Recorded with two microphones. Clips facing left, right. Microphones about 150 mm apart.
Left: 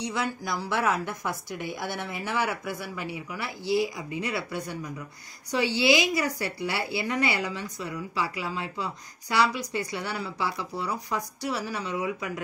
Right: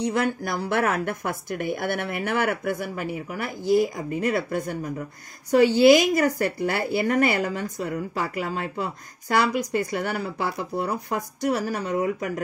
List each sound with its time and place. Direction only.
0.0 s a woman's voice: 55° right (ahead or behind)